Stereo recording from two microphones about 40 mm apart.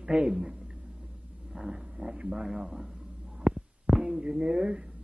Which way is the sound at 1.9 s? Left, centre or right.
Right.